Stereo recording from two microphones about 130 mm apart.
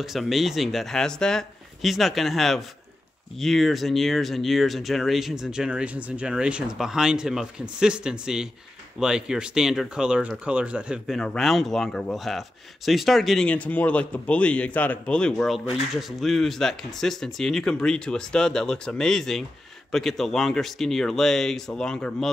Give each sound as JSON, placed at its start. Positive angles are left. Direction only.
{"t": 0.0, "sound": "speech", "side_deg": 0}
{"t": 11.1, "sound": "speech", "side_deg": 0}